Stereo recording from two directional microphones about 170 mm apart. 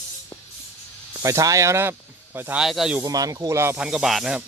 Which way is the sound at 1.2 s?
20° right (ahead or behind).